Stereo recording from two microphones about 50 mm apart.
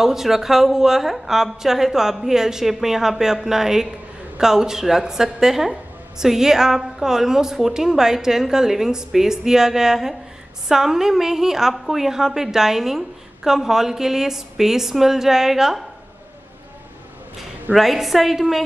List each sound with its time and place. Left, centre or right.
0.0 s a woman's voice: centre
17.7 s a woman's voice: centre